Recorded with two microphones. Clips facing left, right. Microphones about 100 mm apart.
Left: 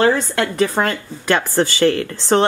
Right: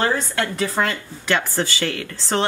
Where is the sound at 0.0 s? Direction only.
55° left (ahead or behind).